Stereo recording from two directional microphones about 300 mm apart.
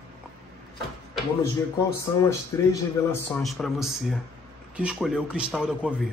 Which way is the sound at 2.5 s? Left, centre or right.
Centre.